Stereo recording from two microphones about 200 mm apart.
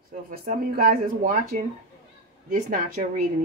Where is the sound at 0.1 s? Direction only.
45° right (ahead or behind).